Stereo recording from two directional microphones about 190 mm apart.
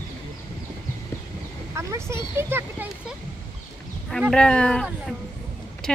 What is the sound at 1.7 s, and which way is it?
Speech, 15° right (ahead or behind).